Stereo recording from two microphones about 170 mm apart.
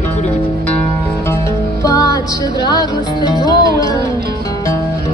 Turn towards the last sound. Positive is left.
turn(degrees=25)  # may be behind; listen again after turning